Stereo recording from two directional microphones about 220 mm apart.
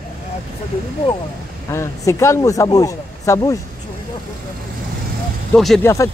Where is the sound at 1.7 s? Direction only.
15° left (ahead or behind).